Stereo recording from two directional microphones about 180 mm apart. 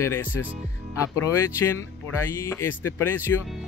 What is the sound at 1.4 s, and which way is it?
Speech, 15° left (ahead or behind).